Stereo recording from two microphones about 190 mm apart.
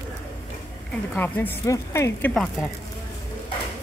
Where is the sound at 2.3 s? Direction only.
Centre (ahead or behind).